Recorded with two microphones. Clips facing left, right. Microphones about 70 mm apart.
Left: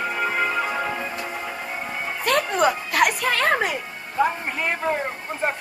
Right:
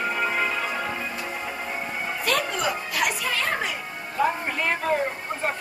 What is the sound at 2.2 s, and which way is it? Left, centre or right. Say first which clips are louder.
Music: left 6 dB; left.